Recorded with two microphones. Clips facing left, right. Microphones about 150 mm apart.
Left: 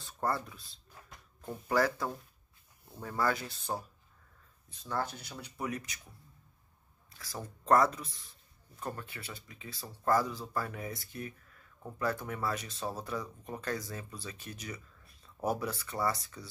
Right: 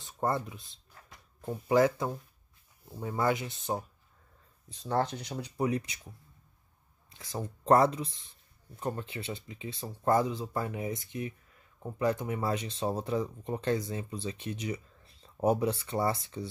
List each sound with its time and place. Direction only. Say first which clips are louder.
0.0 s speech: right 3 dB; 20° right (ahead or behind)
5.3 s speech: right 8 dB; 35° right (ahead or behind)
7.2 s speech: right 5 dB; 25° right (ahead or behind)